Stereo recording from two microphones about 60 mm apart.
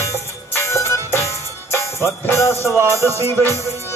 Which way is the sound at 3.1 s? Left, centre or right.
Right.